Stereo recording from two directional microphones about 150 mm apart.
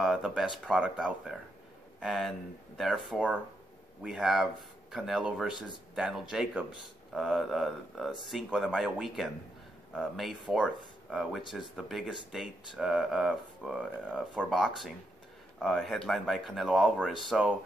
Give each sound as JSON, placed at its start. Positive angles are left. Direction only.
{"t": 0.0, "sound": "speech", "side_deg": -5}